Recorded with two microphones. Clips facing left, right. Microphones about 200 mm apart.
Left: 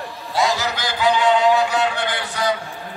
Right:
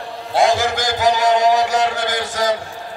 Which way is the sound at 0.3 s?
50° right (ahead or behind).